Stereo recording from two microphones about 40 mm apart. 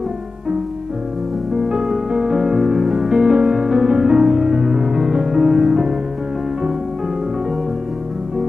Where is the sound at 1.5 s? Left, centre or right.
Centre.